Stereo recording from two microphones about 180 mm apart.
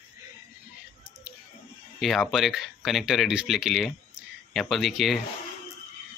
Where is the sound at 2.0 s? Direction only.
Centre (ahead or behind).